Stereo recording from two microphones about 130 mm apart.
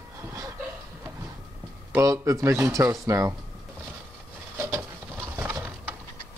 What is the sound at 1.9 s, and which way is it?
Speech, 25° right (ahead or behind).